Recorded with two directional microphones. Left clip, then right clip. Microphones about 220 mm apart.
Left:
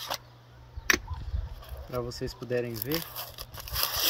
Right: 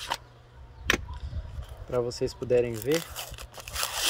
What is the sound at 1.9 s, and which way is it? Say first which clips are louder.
Speech: right 6 dB; 25° right (ahead or behind).